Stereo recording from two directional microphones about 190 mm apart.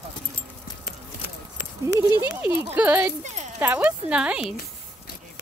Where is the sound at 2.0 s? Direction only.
15° right (ahead or behind).